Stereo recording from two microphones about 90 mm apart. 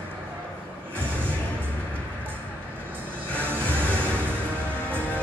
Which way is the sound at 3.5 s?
20° right (ahead or behind).